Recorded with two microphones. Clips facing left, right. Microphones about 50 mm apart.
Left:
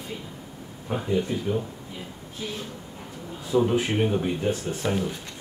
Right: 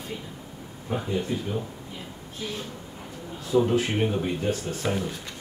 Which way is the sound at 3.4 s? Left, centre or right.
Centre.